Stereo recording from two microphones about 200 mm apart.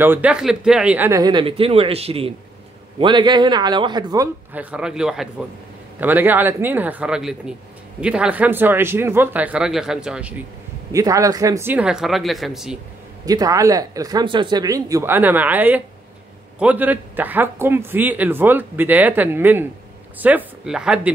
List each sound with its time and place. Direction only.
0.0 s a man's voice: 10° right (ahead or behind)
4.6 s a man's voice: 5° right (ahead or behind)
10.9 s a man's voice: 15° right (ahead or behind); by 12.7 s centre (ahead or behind)
13.2 s a man's voice: 20° right (ahead or behind)